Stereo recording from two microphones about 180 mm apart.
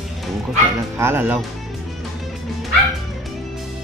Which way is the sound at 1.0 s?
10° right (ahead or behind).